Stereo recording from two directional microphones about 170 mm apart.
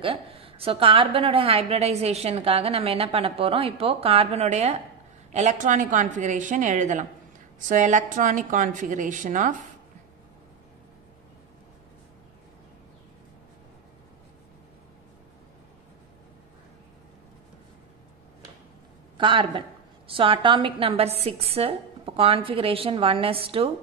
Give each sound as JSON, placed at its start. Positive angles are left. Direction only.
{"t": 0.0, "sound": "a woman's voice", "side_deg": -35}
{"t": 19.1, "sound": "a woman's voice", "side_deg": -30}